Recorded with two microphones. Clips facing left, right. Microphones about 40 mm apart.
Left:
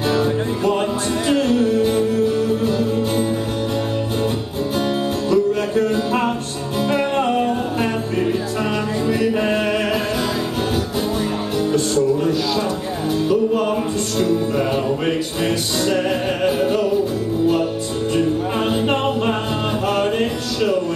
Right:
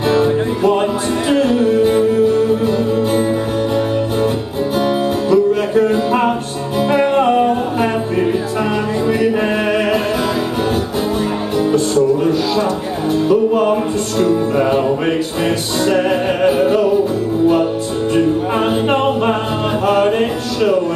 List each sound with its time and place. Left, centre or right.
0.1 s music: centre
5.3 s music: centre
11.9 s music: centre
18.9 s a capella: centre
19.9 s music: centre